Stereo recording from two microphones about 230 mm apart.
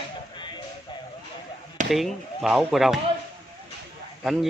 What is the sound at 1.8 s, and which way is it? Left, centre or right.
Speech, centre.